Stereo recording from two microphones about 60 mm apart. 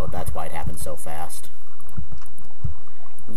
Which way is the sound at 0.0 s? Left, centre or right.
Centre.